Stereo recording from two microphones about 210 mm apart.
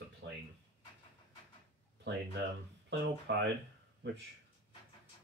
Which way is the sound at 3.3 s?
55° right (ahead or behind).